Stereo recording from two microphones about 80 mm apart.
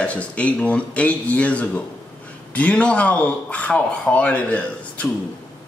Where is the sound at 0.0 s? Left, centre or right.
Centre.